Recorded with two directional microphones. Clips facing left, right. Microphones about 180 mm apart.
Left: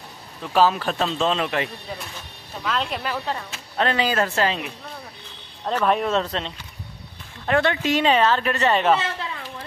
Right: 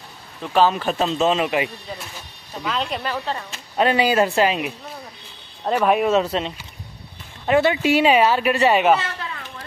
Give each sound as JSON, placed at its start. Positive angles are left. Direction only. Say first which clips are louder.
{"t": 0.5, "sound": "speech", "louder": "right 1 dB", "side_deg": 5}
{"t": 3.7, "sound": "speech", "louder": "right 4 dB", "side_deg": -10}
{"t": 9.0, "sound": "a sound", "louder": "left 1 dB", "side_deg": 20}